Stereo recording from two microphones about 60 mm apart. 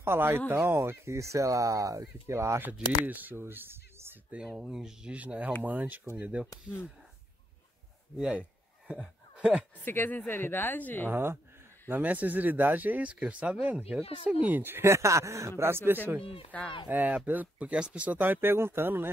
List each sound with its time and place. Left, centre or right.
0.0 s speech: right
2.6 s speech: right
4.5 s speech: centre
5.1 s speech: right
8.2 s a sound: centre
9.4 s speech: right
9.8 s speech: left
11.1 s speech: right
11.9 s speech: right
14.6 s speech: right
14.9 s speech: right
16.2 s speech: left
16.8 s speech: right